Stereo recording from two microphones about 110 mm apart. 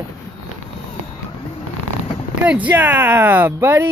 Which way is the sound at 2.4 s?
10° right (ahead or behind).